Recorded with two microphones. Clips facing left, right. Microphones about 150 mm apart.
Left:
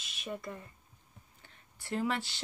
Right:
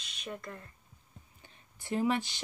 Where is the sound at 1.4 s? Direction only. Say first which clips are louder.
Even; 15° right (ahead or behind).